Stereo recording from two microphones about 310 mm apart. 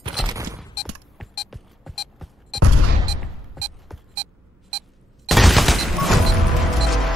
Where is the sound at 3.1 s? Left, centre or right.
Centre.